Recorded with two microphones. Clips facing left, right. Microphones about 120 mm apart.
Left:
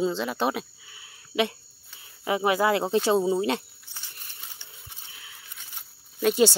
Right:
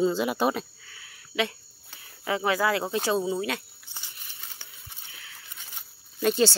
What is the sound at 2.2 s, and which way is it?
Speech, 20° left (ahead or behind).